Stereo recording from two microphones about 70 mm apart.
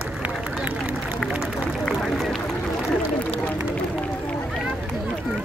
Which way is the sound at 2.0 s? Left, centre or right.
Centre.